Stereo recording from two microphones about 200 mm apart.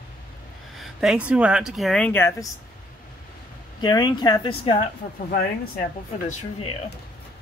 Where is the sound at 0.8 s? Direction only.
5° right (ahead or behind); by 2.4 s 10° left (ahead or behind).